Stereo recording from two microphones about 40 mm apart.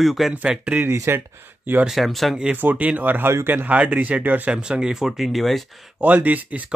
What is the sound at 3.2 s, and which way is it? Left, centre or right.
Speech, right.